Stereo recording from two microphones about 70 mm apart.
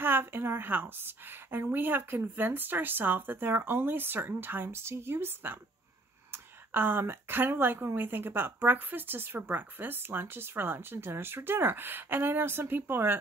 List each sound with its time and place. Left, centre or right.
0.0 s speech: right